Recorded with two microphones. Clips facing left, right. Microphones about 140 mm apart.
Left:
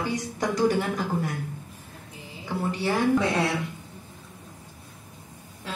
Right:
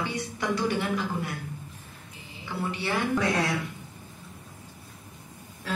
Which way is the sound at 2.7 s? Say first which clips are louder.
Left 4 dB; 40° left (ahead or behind).